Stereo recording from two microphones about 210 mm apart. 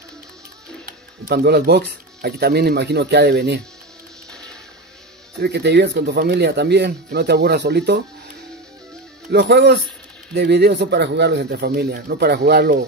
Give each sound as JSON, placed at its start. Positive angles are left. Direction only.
{"t": 0.8, "sound": "speech", "side_deg": -50}
{"t": 5.4, "sound": "speech", "side_deg": -55}
{"t": 9.3, "sound": "speech", "side_deg": -50}